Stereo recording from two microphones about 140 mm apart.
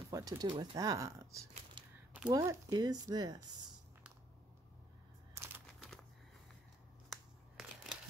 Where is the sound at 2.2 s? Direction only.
25° right (ahead or behind).